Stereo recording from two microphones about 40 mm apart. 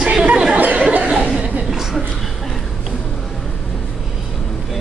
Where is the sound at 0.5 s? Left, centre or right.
Right.